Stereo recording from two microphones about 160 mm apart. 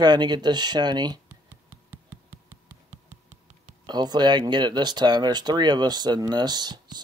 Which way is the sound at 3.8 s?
25° right (ahead or behind).